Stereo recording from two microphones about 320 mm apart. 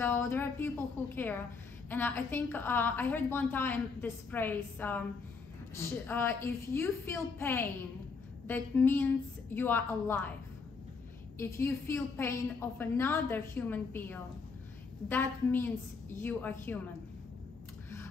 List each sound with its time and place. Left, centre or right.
0.0 s a sound: centre
1.9 s a woman's voice: centre
11.3 s a woman's voice: centre